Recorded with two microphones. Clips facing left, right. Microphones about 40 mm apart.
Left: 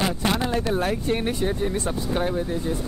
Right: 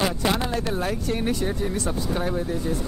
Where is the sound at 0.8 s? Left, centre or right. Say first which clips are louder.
Left 2 dB; left.